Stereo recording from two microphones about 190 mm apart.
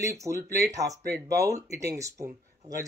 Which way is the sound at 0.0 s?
15° right (ahead or behind).